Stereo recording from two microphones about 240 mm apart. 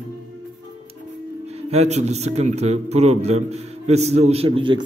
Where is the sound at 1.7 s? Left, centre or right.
Right.